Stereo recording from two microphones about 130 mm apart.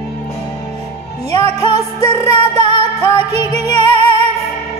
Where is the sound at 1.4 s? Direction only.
50° right (ahead or behind).